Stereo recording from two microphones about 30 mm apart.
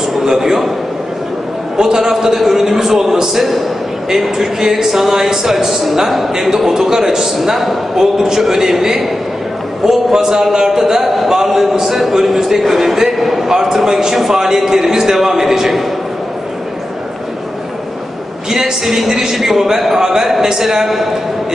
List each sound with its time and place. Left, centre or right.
0.2 s a man's voice: centre
1.8 s a man's voice: centre
18.5 s a man's voice: centre